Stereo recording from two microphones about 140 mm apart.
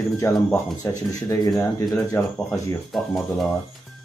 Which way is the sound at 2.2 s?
15° left (ahead or behind).